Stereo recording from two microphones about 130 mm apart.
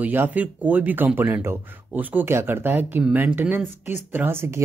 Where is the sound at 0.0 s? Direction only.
15° right (ahead or behind).